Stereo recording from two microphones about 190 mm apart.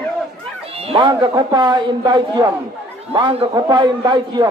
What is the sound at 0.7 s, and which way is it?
A man's voice, 30° right (ahead or behind).